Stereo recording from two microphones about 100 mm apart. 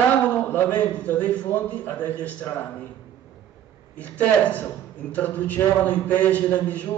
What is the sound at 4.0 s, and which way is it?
A man's voice, 15° left (ahead or behind).